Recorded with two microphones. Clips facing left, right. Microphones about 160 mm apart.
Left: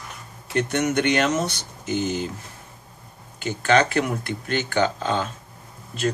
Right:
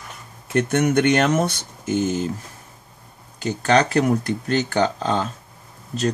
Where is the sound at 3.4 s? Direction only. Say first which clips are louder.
Right 1 dB; 40° right (ahead or behind).